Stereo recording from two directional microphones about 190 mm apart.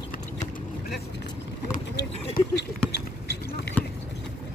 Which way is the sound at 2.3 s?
60° left (ahead or behind).